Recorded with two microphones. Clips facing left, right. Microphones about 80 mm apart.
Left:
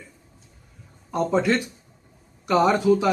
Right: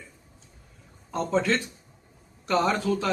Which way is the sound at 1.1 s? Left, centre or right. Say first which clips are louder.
Left 4 dB; centre.